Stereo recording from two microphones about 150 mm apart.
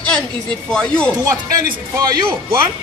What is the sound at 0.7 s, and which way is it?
Speech, 5° left (ahead or behind).